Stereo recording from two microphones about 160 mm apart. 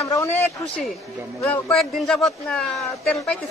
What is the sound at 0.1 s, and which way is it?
Speech, 15° left (ahead or behind).